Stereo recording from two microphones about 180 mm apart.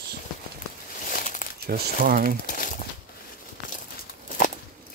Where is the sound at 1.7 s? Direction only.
55° right (ahead or behind).